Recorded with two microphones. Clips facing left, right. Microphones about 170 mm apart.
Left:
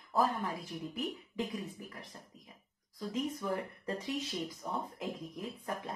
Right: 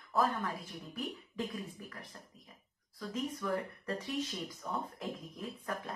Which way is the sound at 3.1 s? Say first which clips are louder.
Even; 25° left (ahead or behind).